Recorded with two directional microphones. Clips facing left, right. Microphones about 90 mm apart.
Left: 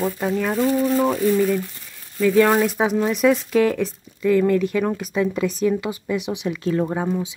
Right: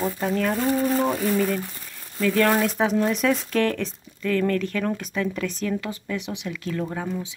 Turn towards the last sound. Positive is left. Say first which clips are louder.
# left 6 dB
turn(degrees=20)  # may be behind; listen again after turning